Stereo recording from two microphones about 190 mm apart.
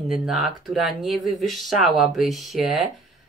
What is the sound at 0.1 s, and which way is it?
Speech, centre (ahead or behind).